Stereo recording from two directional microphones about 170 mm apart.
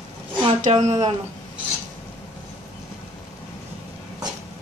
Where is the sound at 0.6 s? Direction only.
45° right (ahead or behind).